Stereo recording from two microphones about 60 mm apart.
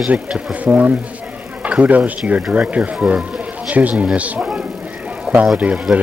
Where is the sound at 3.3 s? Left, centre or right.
Right.